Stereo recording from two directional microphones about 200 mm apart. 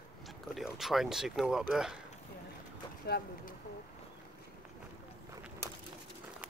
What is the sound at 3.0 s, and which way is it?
Speech, 50° left (ahead or behind).